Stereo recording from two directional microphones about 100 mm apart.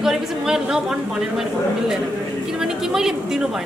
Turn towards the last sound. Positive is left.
turn(degrees=-5)  # may be behind; listen again after turning